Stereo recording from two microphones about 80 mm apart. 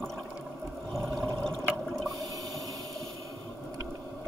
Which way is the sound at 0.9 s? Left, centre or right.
Centre.